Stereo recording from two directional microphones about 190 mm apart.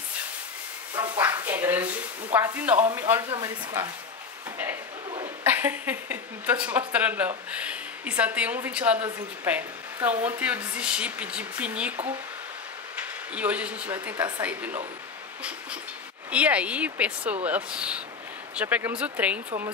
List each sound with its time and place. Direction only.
0.9 s a sound: 20° right (ahead or behind)
1.2 s a sound: 10° right (ahead or behind)
2.3 s a woman's voice: 10° right (ahead or behind)
5.4 s a woman's voice: 10° right (ahead or behind)
12.9 s speech: 5° right (ahead or behind)
16.3 s a woman's voice: 5° right (ahead or behind)